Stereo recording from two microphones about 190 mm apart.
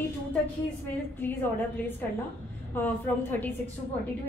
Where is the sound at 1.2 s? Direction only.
10° left (ahead or behind).